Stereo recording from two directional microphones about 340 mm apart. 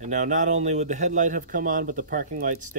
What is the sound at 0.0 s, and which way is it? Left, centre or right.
A man's voice, right.